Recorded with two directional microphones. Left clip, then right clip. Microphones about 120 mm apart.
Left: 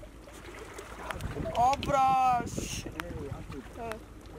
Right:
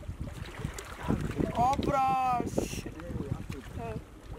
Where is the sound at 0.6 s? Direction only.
50° right (ahead or behind).